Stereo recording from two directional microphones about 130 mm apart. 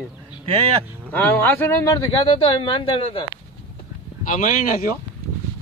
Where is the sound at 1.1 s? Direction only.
15° left (ahead or behind).